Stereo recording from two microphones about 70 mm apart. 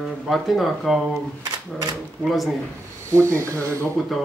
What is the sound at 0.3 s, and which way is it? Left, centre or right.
Speech, centre.